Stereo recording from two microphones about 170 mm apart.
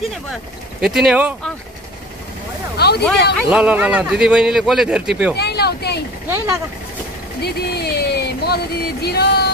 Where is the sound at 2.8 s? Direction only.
70° left (ahead or behind).